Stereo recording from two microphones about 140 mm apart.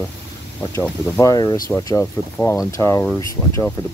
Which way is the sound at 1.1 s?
25° left (ahead or behind).